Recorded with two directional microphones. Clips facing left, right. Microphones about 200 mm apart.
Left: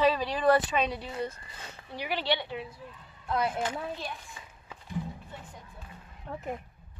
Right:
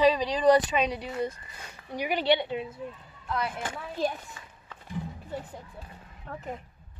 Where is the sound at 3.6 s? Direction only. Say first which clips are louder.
Right 3 dB; 45° right (ahead or behind).